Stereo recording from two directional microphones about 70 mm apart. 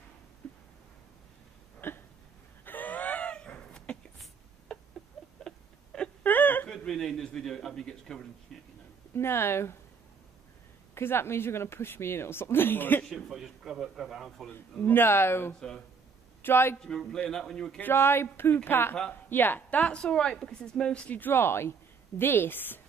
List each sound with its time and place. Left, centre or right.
0.4 s a sound: left
1.8 s hiccup: left
2.6 s a sound: left; by 4.9 s centre
5.2 s rodents: centre
6.2 s whimper: left
6.9 s a man's voice: centre
9.1 s a woman's voice: left
11.0 s a woman's voice: left
13.1 s a man's voice: centre
14.5 s a woman's voice: left
16.8 s a man's voice: centre
17.7 s a woman's voice: left; by 21.2 s centre
21.2 s a woman's voice: left